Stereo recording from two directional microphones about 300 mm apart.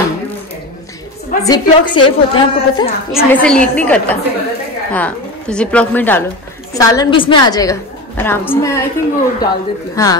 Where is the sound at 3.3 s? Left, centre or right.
Centre.